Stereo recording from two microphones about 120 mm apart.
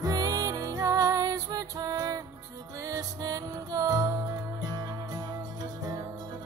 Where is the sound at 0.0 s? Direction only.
30° right (ahead or behind).